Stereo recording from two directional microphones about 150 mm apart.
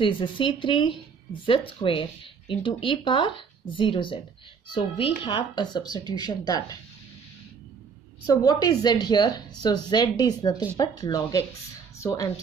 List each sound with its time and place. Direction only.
0.0 s a woman's voice: 35° left (ahead or behind)
8.3 s a woman's voice: 25° left (ahead or behind)